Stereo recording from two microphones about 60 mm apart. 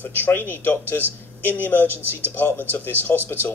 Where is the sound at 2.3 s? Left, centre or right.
Left.